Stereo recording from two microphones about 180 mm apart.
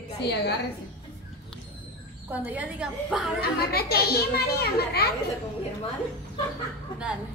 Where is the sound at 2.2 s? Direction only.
10° right (ahead or behind).